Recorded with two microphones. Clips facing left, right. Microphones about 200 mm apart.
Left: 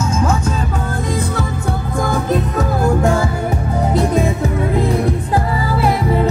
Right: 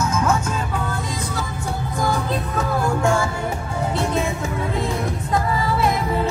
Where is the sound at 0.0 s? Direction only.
30° left (ahead or behind).